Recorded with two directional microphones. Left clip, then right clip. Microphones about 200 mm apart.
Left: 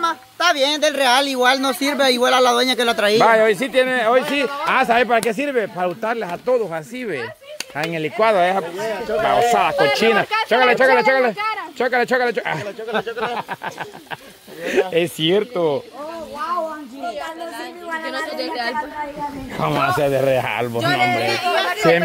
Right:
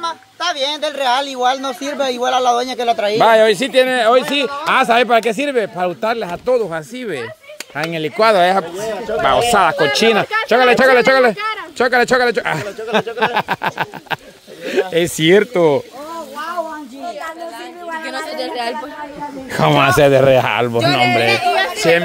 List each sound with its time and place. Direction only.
0.0 s speech: 30° left (ahead or behind); by 3.2 s 50° left (ahead or behind)
3.2 s speech: 20° right (ahead or behind)
11.3 s speech: 5° right (ahead or behind)
11.8 s speech: 25° right (ahead or behind)
13.2 s speech: 50° right (ahead or behind)
14.7 s speech: 10° right (ahead or behind)
15.1 s speech: 40° right (ahead or behind)
18.0 s a sound: 40° right (ahead or behind)
19.5 s a man's voice: 50° right (ahead or behind); by 21.3 s 30° right (ahead or behind)
21.3 s speech: 10° right (ahead or behind)